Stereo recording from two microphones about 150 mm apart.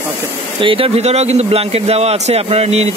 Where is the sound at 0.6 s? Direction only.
35° right (ahead or behind).